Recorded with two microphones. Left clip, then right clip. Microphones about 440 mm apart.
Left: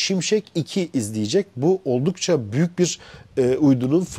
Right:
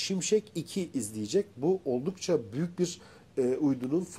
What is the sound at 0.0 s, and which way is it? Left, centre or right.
Speech, left.